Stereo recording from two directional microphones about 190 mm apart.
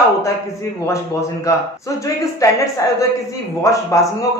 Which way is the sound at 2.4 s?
15° left (ahead or behind).